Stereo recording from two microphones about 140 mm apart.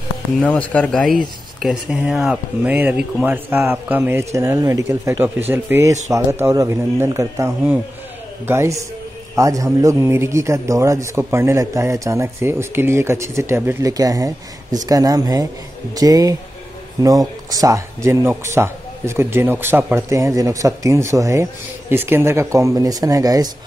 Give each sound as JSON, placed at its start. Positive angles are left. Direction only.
{"t": 0.4, "sound": "a man's voice", "side_deg": 10}